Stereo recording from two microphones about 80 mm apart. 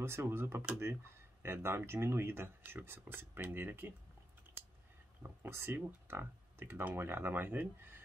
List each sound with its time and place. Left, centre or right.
0.0 s speech: right
5.2 s speech: right